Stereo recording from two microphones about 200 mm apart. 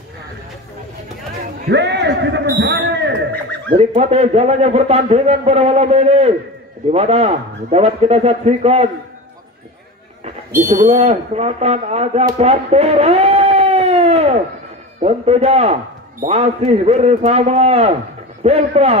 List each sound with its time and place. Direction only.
1.7 s a man's voice: 60° right (ahead or behind)
3.7 s a man's voice: 30° right (ahead or behind)
10.6 s a man's voice: 40° right (ahead or behind)
12.3 s a sound: 35° right (ahead or behind)
15.0 s a man's voice: 30° right (ahead or behind)